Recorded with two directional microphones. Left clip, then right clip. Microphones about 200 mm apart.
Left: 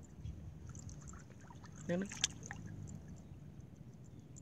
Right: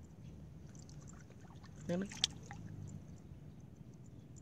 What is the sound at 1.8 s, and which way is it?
Boat, 5° right (ahead or behind).